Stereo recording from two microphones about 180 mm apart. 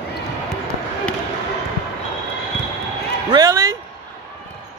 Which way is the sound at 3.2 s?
20° right (ahead or behind).